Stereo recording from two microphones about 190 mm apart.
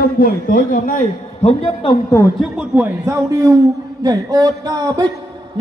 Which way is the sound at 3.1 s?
15° right (ahead or behind).